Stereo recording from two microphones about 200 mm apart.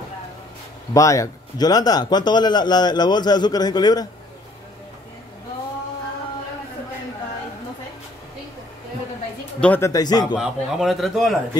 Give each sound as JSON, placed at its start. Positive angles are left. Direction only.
{"t": 0.9, "sound": "a man's voice", "side_deg": 15}
{"t": 9.6, "sound": "speech", "side_deg": 10}
{"t": 10.3, "sound": "a man's voice", "side_deg": 0}